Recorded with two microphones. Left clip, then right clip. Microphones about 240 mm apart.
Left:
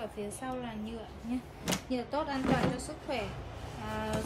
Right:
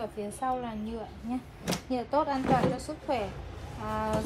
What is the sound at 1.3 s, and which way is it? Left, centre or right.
Speech, centre.